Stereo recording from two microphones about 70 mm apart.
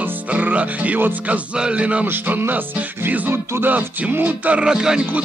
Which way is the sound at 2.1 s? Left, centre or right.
Right.